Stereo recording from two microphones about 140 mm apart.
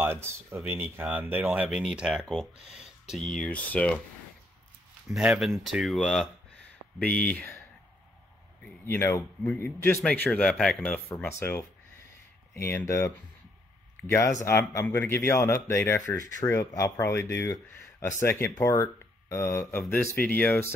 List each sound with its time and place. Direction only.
0.0 s speech: 15° right (ahead or behind); by 4.0 s 10° left (ahead or behind)
5.1 s speech: 5° right (ahead or behind); by 7.6 s 15° left (ahead or behind)
8.8 s speech: 20° left (ahead or behind)
11.1 s speech: 20° left (ahead or behind)
12.6 s speech: 20° left (ahead or behind)